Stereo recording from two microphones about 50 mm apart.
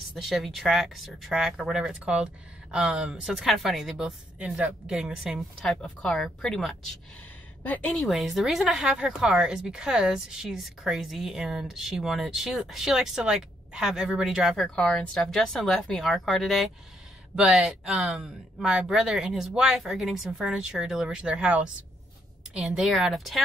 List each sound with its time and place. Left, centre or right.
0.1 s speech: centre
1.6 s a woman's voice: centre
5.6 s speech: centre
7.9 s speech: centre
8.9 s a woman's voice: centre
14.8 s speech: centre
17.4 s a woman's voice: centre